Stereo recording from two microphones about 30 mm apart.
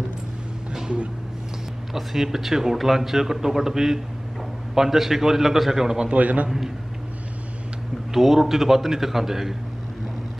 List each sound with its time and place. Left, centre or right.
2.0 s speech: centre
6.1 s a man's voice: right
8.1 s speech: centre